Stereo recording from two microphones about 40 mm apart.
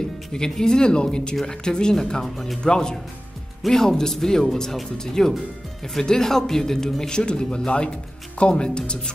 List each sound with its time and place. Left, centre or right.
0.3 s speech: centre
2.6 s speech: centre